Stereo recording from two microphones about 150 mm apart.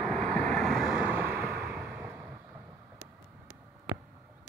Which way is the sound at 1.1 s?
15° right (ahead or behind).